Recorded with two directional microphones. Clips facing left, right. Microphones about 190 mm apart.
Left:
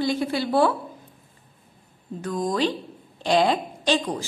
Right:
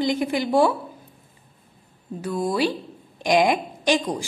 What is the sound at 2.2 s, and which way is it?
A woman's voice, 10° right (ahead or behind).